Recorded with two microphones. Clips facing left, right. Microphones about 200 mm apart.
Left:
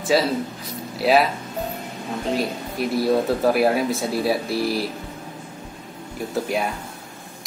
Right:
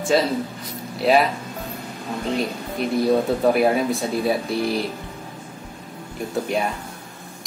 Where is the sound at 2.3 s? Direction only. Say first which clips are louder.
Even; 5° left (ahead or behind).